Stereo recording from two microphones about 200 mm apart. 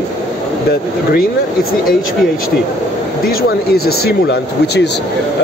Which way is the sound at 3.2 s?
50° left (ahead or behind).